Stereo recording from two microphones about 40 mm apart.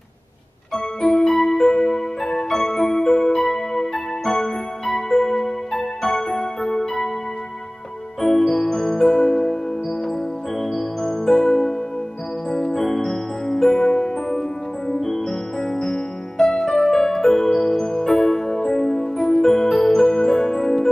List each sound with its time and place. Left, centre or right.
0.7 s music: left
1.2 s music: centre
8.2 s music: centre
10.6 s music: centre